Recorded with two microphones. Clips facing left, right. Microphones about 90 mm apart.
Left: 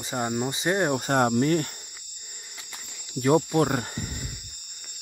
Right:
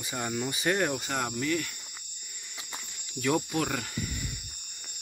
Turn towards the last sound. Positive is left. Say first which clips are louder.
# left 7 dB
turn(degrees=35)  # may be behind; listen again after turning